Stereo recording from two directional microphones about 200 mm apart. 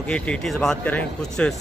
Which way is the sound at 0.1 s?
5° left (ahead or behind).